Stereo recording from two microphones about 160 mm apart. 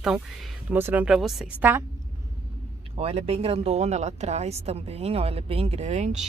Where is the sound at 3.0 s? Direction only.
40° right (ahead or behind).